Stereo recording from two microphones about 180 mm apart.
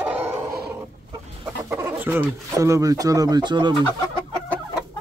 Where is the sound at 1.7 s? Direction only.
10° right (ahead or behind).